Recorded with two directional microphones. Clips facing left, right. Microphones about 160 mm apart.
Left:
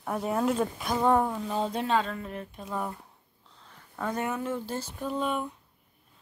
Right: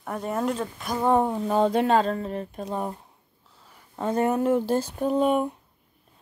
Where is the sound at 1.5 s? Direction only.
65° right (ahead or behind).